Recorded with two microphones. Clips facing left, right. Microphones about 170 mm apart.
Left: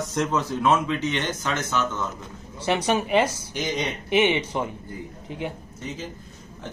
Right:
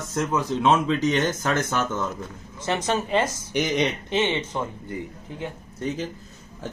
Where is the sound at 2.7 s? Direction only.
10° left (ahead or behind).